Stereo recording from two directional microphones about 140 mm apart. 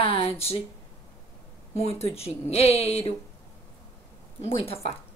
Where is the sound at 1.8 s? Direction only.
45° left (ahead or behind).